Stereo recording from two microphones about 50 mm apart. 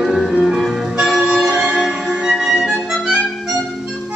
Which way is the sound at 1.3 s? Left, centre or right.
Centre.